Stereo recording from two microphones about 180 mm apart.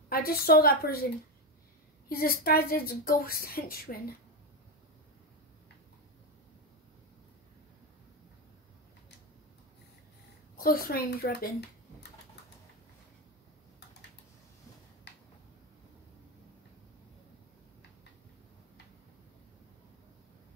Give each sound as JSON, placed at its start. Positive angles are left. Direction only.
{"t": 0.1, "sound": "speech", "side_deg": 55}
{"t": 2.0, "sound": "speech", "side_deg": 55}
{"t": 10.6, "sound": "speech", "side_deg": 55}
{"t": 15.1, "sound": "finger snapping", "side_deg": 70}